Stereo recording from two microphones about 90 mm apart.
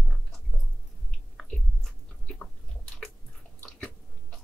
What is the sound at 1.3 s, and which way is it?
Chewing, 5° left (ahead or behind).